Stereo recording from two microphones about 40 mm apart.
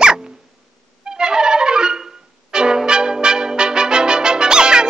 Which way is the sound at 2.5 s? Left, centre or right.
Centre.